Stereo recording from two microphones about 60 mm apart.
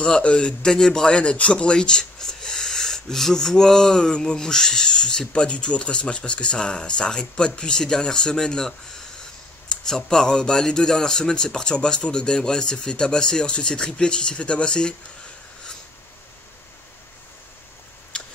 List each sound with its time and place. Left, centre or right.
0.0 s speech: centre
18.1 s tick-tock: centre